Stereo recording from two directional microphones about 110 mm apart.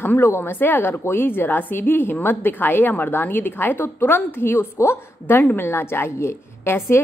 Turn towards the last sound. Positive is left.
turn(degrees=20)  # may be behind; listen again after turning